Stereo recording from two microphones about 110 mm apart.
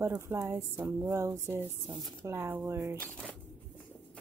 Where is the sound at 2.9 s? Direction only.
10° left (ahead or behind).